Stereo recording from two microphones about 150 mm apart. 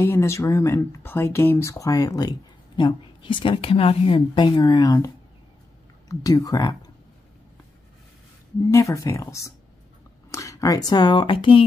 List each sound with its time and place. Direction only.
0.0 s speech: 20° left (ahead or behind)
8.6 s speech: 20° left (ahead or behind)